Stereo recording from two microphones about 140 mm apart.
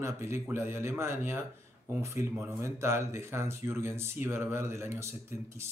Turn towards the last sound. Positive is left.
turn(degrees=-20)  # may be behind; listen again after turning